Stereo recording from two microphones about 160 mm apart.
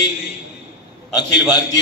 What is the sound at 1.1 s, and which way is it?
Speech, 25° left (ahead or behind).